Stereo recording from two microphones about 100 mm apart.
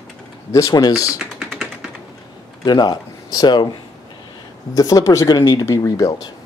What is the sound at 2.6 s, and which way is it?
Speech, 45° left (ahead or behind).